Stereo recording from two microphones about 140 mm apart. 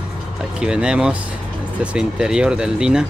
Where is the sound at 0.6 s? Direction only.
5° right (ahead or behind).